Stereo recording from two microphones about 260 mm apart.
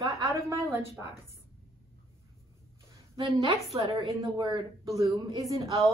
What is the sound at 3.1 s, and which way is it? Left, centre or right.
A woman's voice, centre.